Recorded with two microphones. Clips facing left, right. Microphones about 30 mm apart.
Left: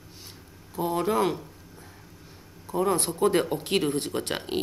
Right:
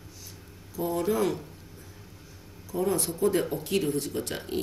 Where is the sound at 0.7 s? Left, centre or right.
Left.